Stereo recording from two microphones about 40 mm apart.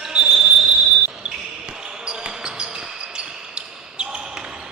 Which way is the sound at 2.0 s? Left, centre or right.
Right.